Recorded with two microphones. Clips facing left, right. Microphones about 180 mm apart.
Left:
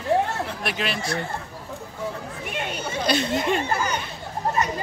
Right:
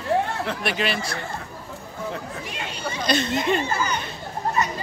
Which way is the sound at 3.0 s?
10° left (ahead or behind).